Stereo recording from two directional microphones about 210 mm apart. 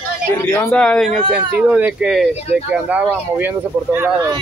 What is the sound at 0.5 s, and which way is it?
Speech, 10° left (ahead or behind).